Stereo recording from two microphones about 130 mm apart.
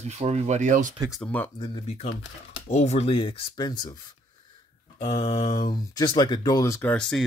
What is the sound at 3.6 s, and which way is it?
Mantra, 30° left (ahead or behind).